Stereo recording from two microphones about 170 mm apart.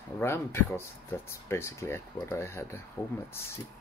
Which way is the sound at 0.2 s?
15° left (ahead or behind).